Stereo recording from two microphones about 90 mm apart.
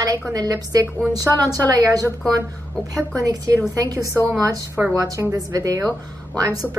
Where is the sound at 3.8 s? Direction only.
40° right (ahead or behind).